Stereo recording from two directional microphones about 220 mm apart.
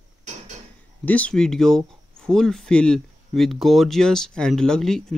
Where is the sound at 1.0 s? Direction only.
5° left (ahead or behind).